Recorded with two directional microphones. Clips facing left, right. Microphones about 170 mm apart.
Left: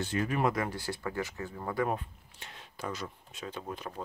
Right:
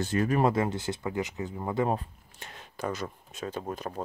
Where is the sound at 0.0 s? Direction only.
40° right (ahead or behind).